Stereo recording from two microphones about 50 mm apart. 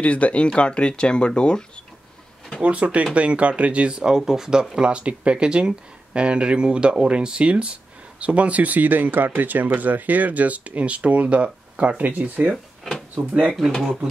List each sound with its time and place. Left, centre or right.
0.0 s speech: left
2.6 s speech: right
12.0 s speech: right
13.6 s speech: centre